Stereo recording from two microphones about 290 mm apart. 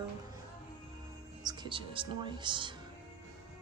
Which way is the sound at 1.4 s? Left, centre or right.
Centre.